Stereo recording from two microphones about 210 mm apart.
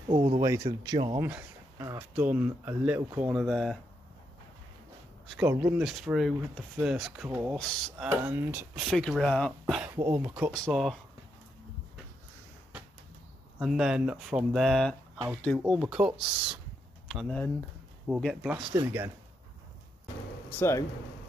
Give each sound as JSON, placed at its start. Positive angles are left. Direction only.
{"t": 0.1, "sound": "speech", "side_deg": -25}
{"t": 5.2, "sound": "speech", "side_deg": 0}
{"t": 7.5, "sound": "speech", "side_deg": 5}
{"t": 8.1, "sound": "speech", "side_deg": -10}
{"t": 13.6, "sound": "speech", "side_deg": 0}
{"t": 20.5, "sound": "speech", "side_deg": 10}